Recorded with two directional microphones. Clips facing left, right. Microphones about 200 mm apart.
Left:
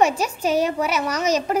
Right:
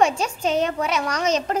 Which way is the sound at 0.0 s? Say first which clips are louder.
Left 1 dB; 5° left (ahead or behind).